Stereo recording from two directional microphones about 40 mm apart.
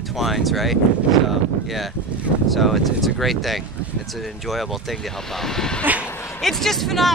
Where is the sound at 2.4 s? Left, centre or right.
Centre.